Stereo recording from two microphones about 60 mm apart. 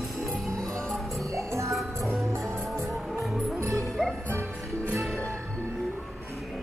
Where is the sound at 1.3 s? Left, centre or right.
Right.